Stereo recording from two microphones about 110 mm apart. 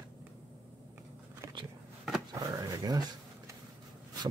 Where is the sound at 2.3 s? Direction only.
35° right (ahead or behind).